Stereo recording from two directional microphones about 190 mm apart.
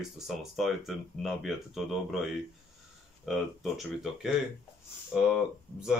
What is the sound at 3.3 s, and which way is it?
Speech, centre (ahead or behind).